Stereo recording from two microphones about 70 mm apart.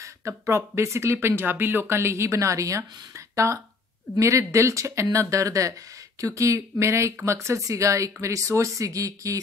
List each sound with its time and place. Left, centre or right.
0.5 s speech: right